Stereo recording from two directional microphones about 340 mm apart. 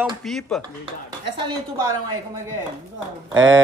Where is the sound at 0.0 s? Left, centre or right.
Centre.